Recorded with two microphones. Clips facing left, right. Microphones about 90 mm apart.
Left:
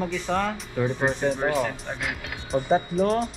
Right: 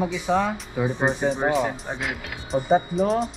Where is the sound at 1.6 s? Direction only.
15° right (ahead or behind).